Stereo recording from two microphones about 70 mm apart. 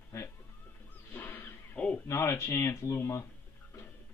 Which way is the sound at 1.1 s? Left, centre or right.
Left.